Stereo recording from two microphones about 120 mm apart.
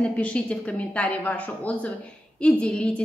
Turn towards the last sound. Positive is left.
turn(degrees=10)  # may be behind; listen again after turning